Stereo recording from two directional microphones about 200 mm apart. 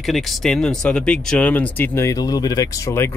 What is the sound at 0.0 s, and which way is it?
Speech, centre (ahead or behind).